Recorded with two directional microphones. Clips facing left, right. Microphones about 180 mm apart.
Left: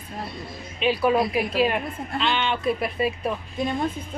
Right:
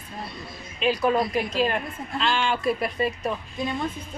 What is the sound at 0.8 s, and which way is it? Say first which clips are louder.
A woman's voice: left 1 dB; 5° left (ahead or behind).